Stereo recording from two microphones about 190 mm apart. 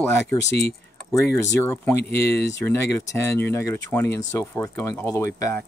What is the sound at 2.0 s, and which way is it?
Speech, 60° left (ahead or behind).